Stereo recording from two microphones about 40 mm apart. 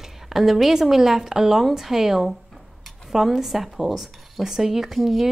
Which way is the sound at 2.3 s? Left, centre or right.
Centre.